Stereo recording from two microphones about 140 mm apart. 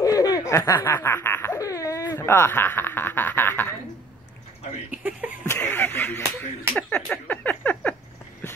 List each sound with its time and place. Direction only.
0.0 s laughter: 25° left (ahead or behind)
4.9 s speech: 10° right (ahead or behind)
5.5 s a sound: 15° left (ahead or behind)